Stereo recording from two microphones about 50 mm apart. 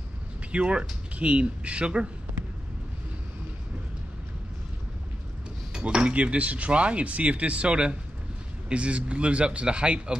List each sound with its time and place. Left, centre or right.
0.5 s speech: right
5.7 s speech: centre